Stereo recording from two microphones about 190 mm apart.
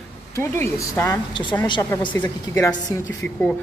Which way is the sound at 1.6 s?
25° left (ahead or behind).